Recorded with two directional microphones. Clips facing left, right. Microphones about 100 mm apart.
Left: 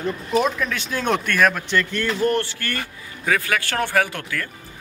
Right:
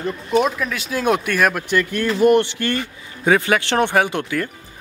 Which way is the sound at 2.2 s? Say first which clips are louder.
Right 10 dB; 20° right (ahead or behind).